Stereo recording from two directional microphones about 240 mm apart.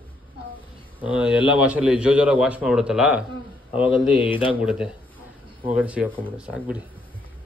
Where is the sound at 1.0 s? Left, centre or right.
Centre.